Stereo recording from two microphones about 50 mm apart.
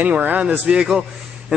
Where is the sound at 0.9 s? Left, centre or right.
Centre.